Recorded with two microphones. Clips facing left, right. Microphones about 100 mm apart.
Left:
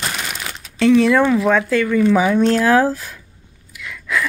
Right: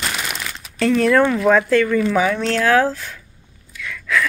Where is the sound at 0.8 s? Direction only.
Centre (ahead or behind).